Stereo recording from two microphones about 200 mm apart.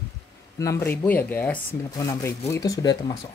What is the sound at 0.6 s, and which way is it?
Speech, 15° left (ahead or behind).